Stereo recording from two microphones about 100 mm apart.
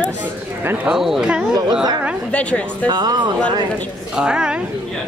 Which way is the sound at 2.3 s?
10° left (ahead or behind).